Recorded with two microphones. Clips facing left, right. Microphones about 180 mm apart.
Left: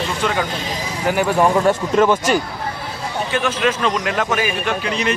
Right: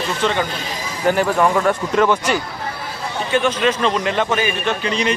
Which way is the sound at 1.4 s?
20° left (ahead or behind).